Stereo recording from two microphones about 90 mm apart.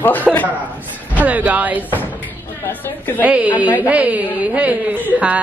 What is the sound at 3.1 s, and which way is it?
A woman's voice, 15° right (ahead or behind).